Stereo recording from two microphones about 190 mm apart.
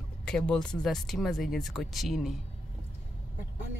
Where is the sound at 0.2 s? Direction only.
5° left (ahead or behind).